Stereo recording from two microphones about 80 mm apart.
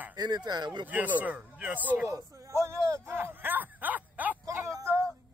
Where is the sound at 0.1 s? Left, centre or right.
Right.